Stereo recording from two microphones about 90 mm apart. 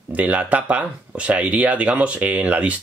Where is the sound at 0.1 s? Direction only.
15° right (ahead or behind).